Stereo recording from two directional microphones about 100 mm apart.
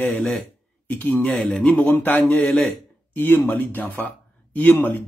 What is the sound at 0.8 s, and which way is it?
Speech, 15° left (ahead or behind).